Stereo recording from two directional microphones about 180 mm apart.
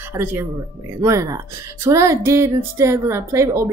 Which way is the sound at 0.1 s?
15° right (ahead or behind).